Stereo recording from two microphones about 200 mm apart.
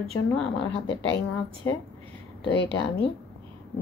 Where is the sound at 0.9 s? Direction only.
60° left (ahead or behind).